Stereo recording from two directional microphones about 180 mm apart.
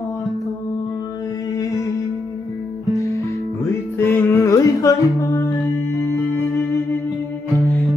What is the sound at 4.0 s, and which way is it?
Music, 10° left (ahead or behind).